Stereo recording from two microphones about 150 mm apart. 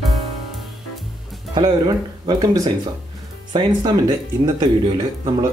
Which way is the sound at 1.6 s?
30° right (ahead or behind).